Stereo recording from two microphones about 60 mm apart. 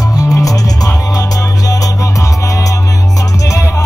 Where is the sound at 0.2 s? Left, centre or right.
Left.